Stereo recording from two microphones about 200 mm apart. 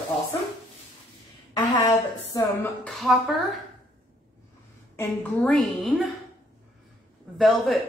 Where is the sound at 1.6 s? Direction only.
20° left (ahead or behind).